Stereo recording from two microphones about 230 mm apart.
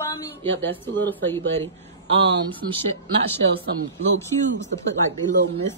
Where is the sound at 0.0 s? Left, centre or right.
Centre.